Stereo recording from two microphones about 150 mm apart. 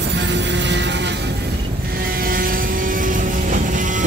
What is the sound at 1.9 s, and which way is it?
Vehicle, 85° right.